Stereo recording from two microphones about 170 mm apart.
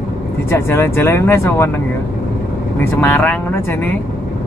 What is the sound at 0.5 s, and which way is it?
Speech, 15° left (ahead or behind).